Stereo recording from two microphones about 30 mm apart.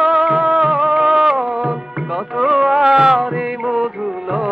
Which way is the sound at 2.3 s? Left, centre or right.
Centre.